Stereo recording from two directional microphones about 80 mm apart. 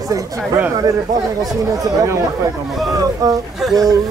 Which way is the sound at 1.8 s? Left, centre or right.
Right.